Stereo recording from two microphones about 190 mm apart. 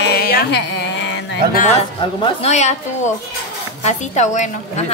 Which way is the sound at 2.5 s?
35° left (ahead or behind).